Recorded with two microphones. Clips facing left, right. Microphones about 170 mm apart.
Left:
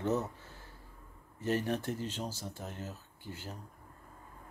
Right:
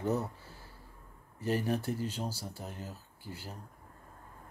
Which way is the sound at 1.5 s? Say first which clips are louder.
Right 1 dB; 10° right (ahead or behind).